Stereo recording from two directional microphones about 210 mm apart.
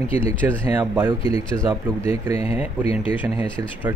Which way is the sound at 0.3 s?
10° right (ahead or behind).